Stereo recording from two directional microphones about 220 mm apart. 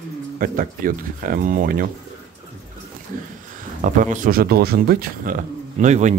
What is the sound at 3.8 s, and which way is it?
Speech, 35° right (ahead or behind).